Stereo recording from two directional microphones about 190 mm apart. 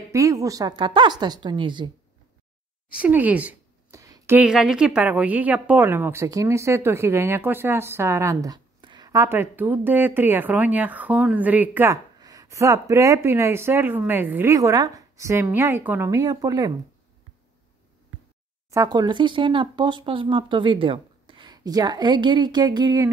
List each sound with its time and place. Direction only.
0.1 s speech: 15° right (ahead or behind)
2.9 s speech: 5° right (ahead or behind)
18.7 s speech: 20° right (ahead or behind)